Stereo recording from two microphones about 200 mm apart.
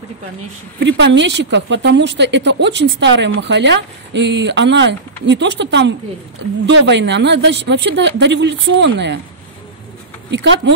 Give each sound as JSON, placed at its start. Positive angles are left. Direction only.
{"t": 0.7, "sound": "speech", "side_deg": -60}
{"t": 10.3, "sound": "speech", "side_deg": -65}